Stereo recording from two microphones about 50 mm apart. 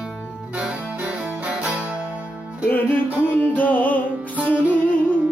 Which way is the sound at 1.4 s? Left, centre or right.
Right.